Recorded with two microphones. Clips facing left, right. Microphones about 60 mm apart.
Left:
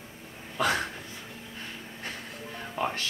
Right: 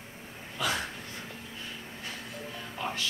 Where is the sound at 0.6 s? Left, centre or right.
Left.